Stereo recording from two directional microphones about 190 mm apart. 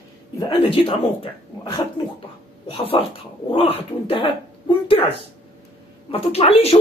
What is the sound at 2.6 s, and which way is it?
Speech, 30° left (ahead or behind).